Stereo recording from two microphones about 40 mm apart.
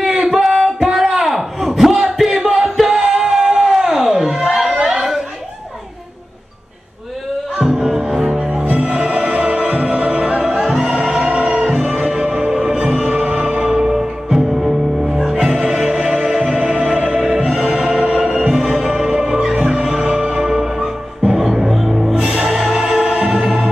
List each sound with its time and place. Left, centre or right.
0.2 s a sound: centre
4.8 s chatter: centre
7.5 s music: centre
8.6 s music: right
10.4 s music: centre
22.1 s music: right